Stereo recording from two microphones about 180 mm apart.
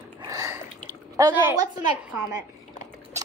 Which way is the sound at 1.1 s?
20° right (ahead or behind).